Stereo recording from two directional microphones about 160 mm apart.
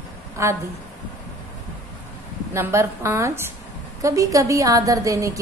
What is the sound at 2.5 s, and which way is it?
A woman's voice, 15° right (ahead or behind).